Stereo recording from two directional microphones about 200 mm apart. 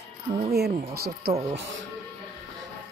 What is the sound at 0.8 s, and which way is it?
Speech, 50° right (ahead or behind).